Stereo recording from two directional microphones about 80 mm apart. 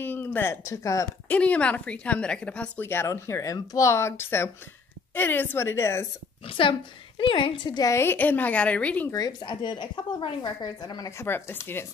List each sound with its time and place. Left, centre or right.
0.0 s a sound: left
0.7 s speech: left
1.3 s a woman's voice: centre
2.8 s a woman's voice: left
3.1 s a woman's voice: left
6.5 s a woman's voice: left
7.8 s a woman's voice: left; by 9.1 s centre
9.1 s a woman's voice: left
11.1 s speech: left